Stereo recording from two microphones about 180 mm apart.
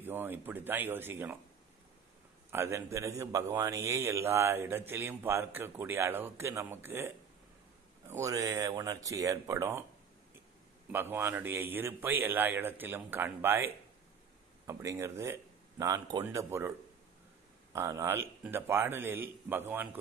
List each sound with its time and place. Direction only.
0.0 s a man's voice: 10° right (ahead or behind)
2.5 s a man's voice: 15° right (ahead or behind)
8.1 s speech: 20° right (ahead or behind)
10.9 s a man's voice: 10° right (ahead or behind)
17.7 s a man's voice: 15° right (ahead or behind)